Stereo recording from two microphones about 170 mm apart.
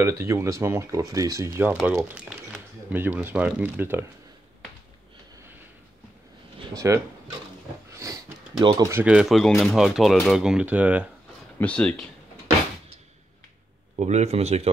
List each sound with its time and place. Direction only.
0.0 s speech: 15° right (ahead or behind)
6.7 s speech: 20° right (ahead or behind)
7.9 s sniff: 20° right (ahead or behind)
9.0 s speech: 5° right (ahead or behind)
11.5 s speech: 5° left (ahead or behind)
13.9 s speech: 40° right (ahead or behind)